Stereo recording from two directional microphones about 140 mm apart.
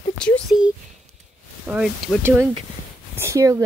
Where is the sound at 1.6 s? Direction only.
5° right (ahead or behind).